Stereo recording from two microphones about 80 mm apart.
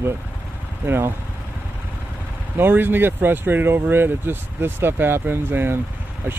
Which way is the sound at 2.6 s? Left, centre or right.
Right.